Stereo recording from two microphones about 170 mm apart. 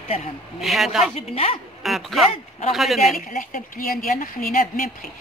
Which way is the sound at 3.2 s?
50° left (ahead or behind).